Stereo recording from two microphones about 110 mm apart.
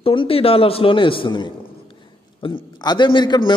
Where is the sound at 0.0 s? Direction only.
55° left (ahead or behind).